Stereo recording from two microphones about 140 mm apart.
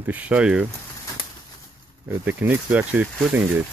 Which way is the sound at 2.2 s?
10° right (ahead or behind).